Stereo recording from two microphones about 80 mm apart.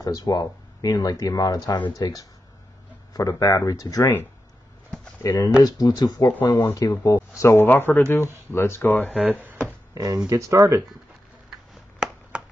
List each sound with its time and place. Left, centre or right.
0.0 s speech: left
5.2 s speech: left
7.2 s speech: left
9.2 s speech: right
9.9 s speech: right
10.3 s speech: right
12.3 s a sound: centre